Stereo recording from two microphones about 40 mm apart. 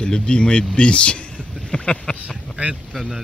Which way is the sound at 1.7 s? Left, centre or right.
Left.